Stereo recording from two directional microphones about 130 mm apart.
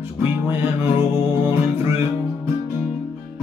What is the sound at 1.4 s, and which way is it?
Music, 20° right (ahead or behind).